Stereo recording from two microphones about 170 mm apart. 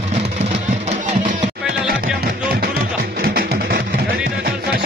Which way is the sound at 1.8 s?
60° right (ahead or behind).